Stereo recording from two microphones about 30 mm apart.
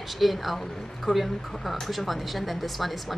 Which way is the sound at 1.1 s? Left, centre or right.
Centre.